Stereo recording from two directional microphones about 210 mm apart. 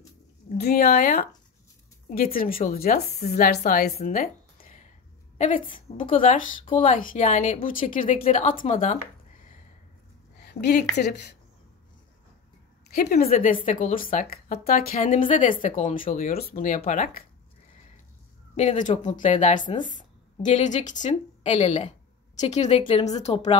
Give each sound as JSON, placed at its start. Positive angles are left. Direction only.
{"t": 0.6, "sound": "a woman's voice", "side_deg": 50}
{"t": 10.5, "sound": "speech", "side_deg": 50}
{"t": 12.9, "sound": "speech", "side_deg": 45}
{"t": 18.6, "sound": "speech", "side_deg": 35}
{"t": 19.9, "sound": "a sound", "side_deg": 40}
{"t": 20.5, "sound": "speech", "side_deg": 35}